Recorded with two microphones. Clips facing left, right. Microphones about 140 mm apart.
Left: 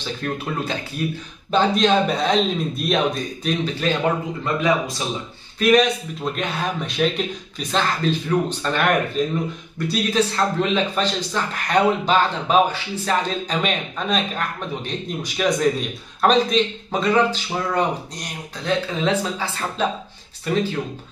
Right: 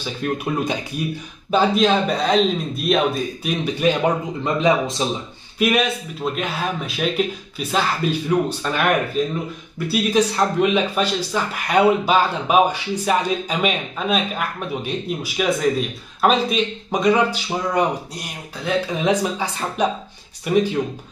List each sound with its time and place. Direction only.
0.0 s speech: 10° right (ahead or behind)
4.6 s speech: 25° right (ahead or behind)
5.6 s speech: 10° right (ahead or behind)